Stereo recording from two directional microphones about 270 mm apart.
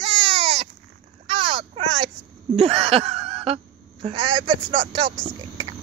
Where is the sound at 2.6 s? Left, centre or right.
Right.